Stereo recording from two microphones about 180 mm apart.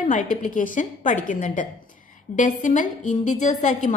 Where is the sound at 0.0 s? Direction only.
45° left (ahead or behind).